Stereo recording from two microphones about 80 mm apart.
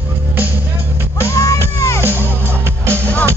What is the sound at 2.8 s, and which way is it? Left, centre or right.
Music, right.